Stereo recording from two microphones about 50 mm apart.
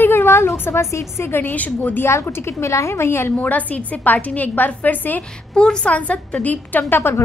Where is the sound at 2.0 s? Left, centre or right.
Left.